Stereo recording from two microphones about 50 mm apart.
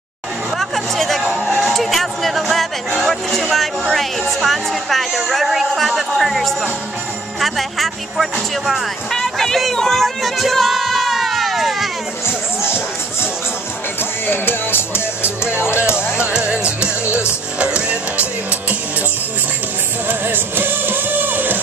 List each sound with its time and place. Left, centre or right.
0.6 s chatter: centre
1.6 s music: centre
3.0 s speech: centre
9.1 s music: centre
12.3 s speech: left
16.3 s music: centre
20.1 s music: right